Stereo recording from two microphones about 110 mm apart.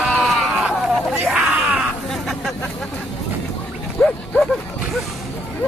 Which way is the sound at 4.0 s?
15° left (ahead or behind).